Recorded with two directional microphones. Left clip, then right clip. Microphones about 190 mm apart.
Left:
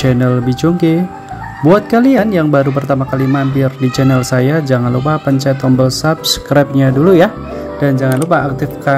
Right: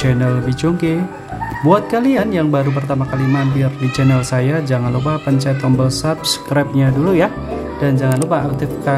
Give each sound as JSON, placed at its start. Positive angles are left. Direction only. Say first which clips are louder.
{"t": 0.0, "sound": "speech", "louder": "left 5 dB", "side_deg": 15}